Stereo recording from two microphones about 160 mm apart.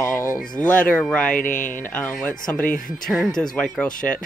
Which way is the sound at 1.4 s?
55° left (ahead or behind).